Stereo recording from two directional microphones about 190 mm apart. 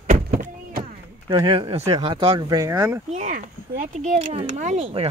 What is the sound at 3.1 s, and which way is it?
Speech, 45° right (ahead or behind).